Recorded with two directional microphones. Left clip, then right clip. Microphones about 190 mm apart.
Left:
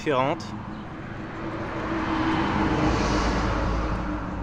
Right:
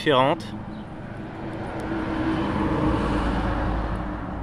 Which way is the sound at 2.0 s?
15° right (ahead or behind).